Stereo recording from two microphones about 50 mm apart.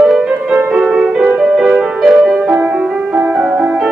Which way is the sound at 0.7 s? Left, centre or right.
Centre.